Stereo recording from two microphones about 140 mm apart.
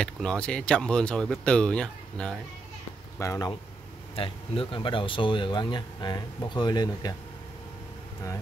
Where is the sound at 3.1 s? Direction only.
20° left (ahead or behind).